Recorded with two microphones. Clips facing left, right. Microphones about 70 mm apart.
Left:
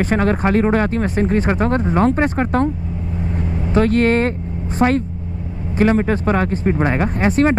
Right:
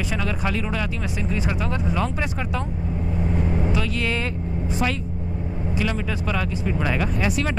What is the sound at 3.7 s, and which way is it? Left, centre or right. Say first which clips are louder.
Speech: left 11 dB; left.